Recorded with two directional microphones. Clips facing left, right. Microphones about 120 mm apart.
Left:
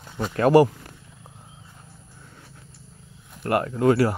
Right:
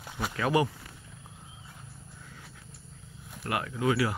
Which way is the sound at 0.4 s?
55° left (ahead or behind).